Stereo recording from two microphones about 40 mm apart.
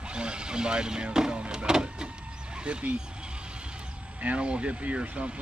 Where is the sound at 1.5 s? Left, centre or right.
Right.